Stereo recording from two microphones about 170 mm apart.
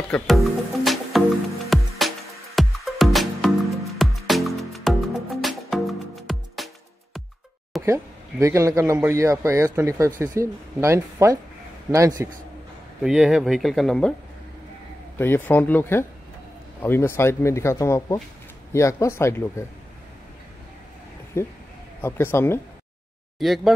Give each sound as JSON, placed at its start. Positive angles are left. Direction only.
{"t": 0.1, "sound": "music", "side_deg": 0}
{"t": 7.8, "sound": "speech", "side_deg": -15}
{"t": 13.0, "sound": "speech", "side_deg": -5}
{"t": 15.1, "sound": "speech", "side_deg": 10}
{"t": 21.4, "sound": "speech", "side_deg": 15}
{"t": 23.4, "sound": "speech", "side_deg": 0}